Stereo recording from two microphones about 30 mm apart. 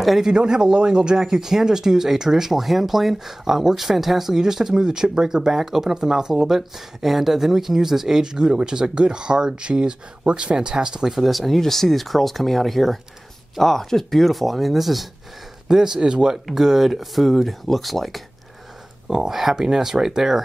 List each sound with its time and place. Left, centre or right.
0.5 s speech: right
11.1 s speech: centre
15.7 s speech: right
16.5 s speech: centre
19.0 s speech: centre